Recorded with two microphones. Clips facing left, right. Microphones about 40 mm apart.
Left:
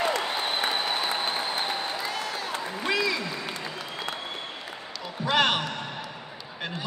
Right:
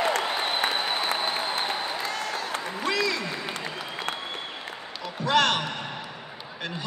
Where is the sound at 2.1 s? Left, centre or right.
Centre.